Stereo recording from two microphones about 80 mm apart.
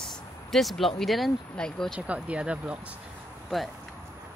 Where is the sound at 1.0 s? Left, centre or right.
Centre.